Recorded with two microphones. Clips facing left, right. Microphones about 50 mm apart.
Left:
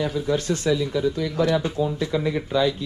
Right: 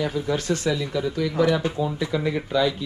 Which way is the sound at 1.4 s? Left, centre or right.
Right.